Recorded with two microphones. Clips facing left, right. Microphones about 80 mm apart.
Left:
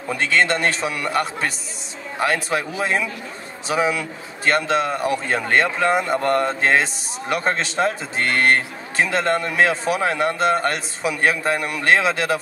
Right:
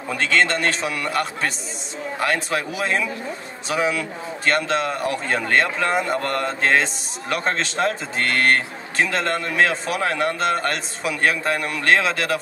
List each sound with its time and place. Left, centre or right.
0.1 s a man's voice: centre
3.6 s a man's voice: centre